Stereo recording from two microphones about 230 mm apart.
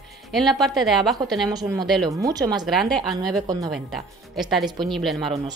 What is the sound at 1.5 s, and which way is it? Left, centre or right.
Speech, centre.